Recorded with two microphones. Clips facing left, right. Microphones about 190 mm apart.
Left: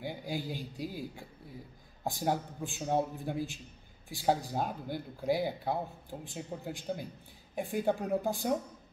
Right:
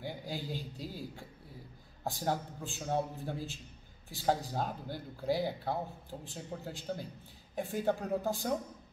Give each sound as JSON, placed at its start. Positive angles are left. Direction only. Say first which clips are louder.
{"t": 0.0, "sound": "a man's voice", "louder": "left 3 dB", "side_deg": 15}